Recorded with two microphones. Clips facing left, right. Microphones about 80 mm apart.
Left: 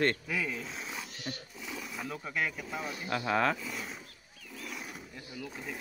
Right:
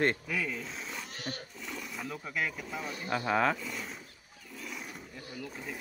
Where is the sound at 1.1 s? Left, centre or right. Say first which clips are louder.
Right 1 dB; right.